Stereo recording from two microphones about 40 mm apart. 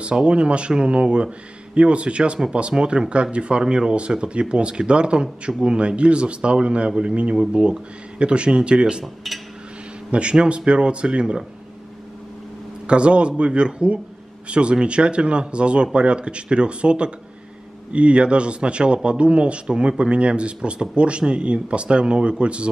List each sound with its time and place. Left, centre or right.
0.0 s speech: right
9.0 s speech: centre
10.3 s speech: right
12.8 s speech: right